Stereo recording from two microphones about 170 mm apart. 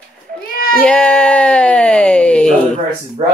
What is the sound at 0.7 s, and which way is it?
Speech, 5° left (ahead or behind).